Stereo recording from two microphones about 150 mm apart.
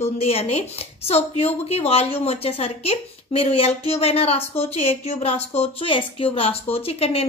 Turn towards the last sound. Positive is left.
turn(degrees=40)  # may be behind; listen again after turning